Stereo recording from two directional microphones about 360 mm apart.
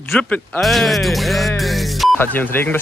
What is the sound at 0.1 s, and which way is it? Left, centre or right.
Speech, centre.